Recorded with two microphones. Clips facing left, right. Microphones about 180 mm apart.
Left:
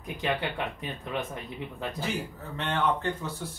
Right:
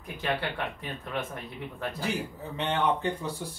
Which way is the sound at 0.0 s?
15° left (ahead or behind).